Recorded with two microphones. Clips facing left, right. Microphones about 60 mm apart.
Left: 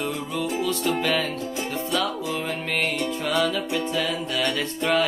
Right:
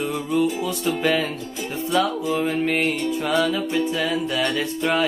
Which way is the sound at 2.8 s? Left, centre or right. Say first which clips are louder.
Right 3 dB; right.